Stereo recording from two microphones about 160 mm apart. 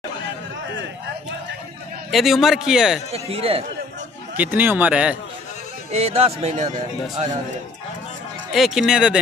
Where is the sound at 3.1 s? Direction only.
40° right (ahead or behind).